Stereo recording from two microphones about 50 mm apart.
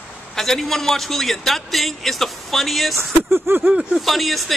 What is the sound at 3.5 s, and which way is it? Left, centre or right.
Speech, right.